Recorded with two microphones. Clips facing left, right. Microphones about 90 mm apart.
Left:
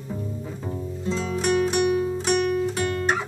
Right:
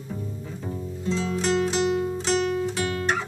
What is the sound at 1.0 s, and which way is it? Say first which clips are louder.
Music: left 1 dB; 10° left (ahead or behind).